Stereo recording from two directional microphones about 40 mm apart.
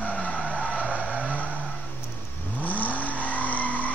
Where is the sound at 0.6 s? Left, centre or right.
Centre.